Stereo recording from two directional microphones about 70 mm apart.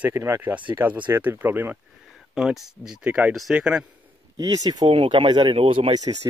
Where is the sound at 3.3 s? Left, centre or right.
Centre.